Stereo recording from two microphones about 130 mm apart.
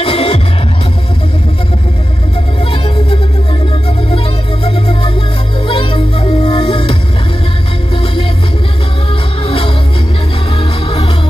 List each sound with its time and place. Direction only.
0.0 s music: 45° left (ahead or behind)
2.6 s music: 45° left (ahead or behind)
4.6 s music: 50° left (ahead or behind)
9.4 s music: 45° left (ahead or behind)